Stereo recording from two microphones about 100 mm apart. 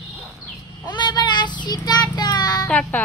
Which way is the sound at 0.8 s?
45° left (ahead or behind).